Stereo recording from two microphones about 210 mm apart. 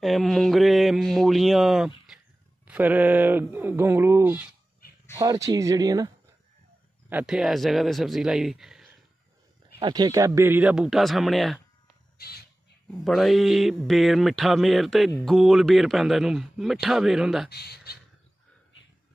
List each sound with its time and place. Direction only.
0.0 s speech: centre (ahead or behind); by 6.1 s 15° right (ahead or behind)
7.1 s speech: 5° right (ahead or behind)
9.8 s speech: 20° right (ahead or behind); by 11.6 s centre (ahead or behind)
12.2 s squawk: 50° left (ahead or behind)
13.0 s speech: centre (ahead or behind)
17.5 s speech: 50° left (ahead or behind)